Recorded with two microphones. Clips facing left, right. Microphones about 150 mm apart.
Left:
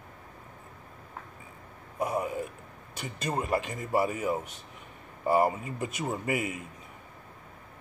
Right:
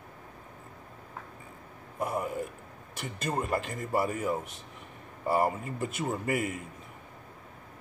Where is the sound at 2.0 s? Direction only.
10° left (ahead or behind).